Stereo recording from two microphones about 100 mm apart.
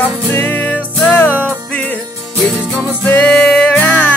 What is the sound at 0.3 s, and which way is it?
Music, 20° left (ahead or behind).